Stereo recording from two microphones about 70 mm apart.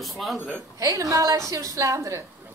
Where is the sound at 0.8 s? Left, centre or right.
Right.